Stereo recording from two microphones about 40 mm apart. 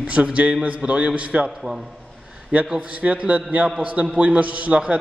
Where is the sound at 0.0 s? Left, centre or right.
Right.